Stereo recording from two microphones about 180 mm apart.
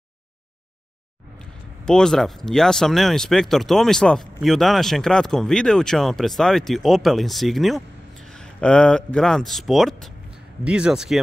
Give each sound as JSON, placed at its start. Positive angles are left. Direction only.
{"t": 1.4, "sound": "speech", "side_deg": 5}